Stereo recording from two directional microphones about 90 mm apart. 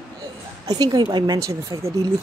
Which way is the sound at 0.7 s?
50° right (ahead or behind).